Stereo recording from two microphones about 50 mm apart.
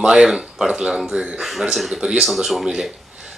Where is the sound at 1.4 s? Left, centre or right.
Centre.